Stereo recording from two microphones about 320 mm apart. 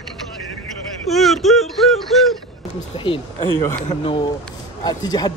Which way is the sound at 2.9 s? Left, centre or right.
Centre.